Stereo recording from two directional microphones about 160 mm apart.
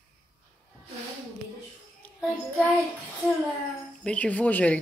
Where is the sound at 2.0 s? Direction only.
10° left (ahead or behind).